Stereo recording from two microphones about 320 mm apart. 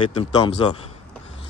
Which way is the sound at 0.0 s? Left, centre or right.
Centre.